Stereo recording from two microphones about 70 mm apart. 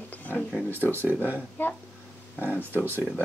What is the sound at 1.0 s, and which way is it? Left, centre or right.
Speech, right.